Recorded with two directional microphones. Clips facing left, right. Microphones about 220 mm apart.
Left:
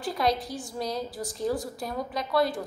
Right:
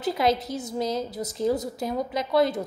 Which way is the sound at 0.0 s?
20° right (ahead or behind).